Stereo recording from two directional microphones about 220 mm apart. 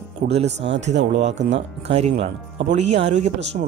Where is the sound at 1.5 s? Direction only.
25° right (ahead or behind).